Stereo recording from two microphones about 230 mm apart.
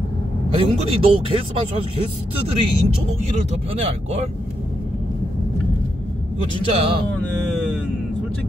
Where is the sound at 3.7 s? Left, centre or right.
Right.